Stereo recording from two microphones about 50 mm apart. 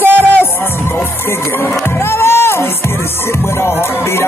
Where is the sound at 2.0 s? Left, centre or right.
Left.